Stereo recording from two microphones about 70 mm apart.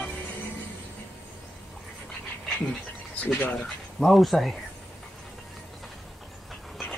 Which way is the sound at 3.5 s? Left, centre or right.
Centre.